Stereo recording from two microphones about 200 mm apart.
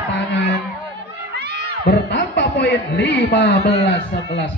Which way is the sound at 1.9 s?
60° left (ahead or behind).